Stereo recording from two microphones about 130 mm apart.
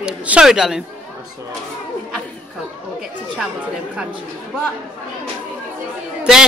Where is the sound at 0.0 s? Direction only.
10° right (ahead or behind).